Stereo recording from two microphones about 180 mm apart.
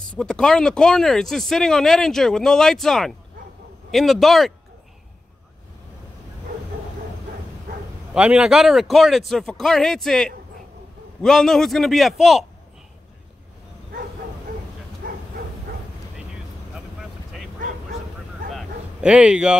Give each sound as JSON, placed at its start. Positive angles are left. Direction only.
{"t": 0.2, "sound": "speech", "side_deg": 5}
{"t": 8.1, "sound": "speech", "side_deg": -5}
{"t": 15.0, "sound": "dog", "side_deg": -50}
{"t": 18.5, "sound": "bow-wow", "side_deg": 0}